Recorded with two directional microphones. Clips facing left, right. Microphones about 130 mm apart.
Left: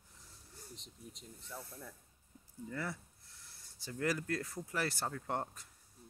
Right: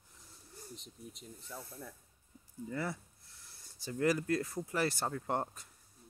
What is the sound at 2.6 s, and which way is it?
Speech, 15° right (ahead or behind).